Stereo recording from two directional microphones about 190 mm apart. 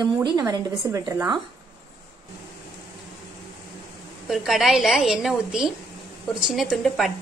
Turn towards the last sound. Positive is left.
turn(degrees=0)  # may be behind; listen again after turning